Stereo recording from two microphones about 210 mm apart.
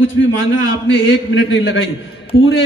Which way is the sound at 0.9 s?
60° left (ahead or behind).